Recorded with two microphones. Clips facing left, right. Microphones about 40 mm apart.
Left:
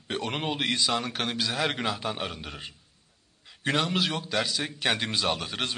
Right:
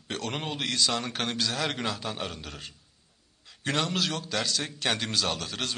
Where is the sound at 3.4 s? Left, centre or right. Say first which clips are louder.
Left 3 dB; centre.